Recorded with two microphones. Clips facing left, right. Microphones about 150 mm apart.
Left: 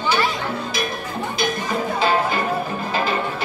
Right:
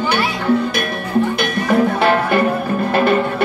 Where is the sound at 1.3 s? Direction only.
65° right (ahead or behind).